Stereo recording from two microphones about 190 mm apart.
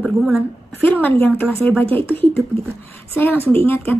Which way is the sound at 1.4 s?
10° left (ahead or behind).